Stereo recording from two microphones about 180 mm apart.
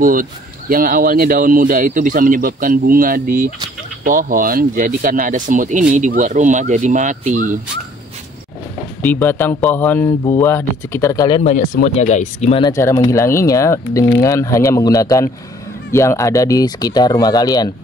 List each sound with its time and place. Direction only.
0.0 s speech: 50° right (ahead or behind)
9.0 s speech: 10° left (ahead or behind)
11.9 s speech: 35° left (ahead or behind)
12.6 s speech: 15° left (ahead or behind)